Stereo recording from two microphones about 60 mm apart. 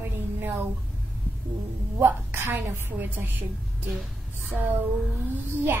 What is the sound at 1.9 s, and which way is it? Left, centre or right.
A woman's voice, right.